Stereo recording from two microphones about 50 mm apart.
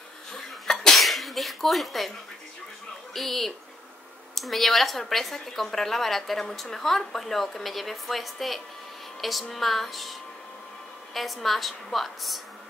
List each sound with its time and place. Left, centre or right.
0.3 s sneeze: centre
3.1 s a woman's voice: centre
11.1 s a woman's voice: centre